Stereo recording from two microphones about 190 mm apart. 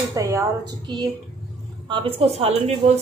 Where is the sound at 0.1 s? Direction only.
15° right (ahead or behind); by 2.7 s 35° right (ahead or behind).